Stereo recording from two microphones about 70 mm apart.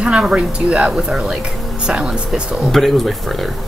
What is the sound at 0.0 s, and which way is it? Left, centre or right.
Speech, centre.